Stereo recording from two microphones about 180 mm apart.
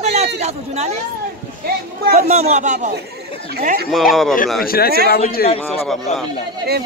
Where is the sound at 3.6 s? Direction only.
55° right (ahead or behind).